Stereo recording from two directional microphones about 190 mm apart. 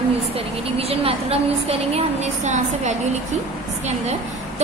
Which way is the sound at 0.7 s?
30° right (ahead or behind).